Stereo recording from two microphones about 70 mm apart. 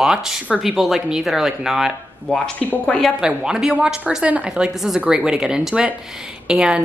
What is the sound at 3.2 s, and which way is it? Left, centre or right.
A woman's voice, centre.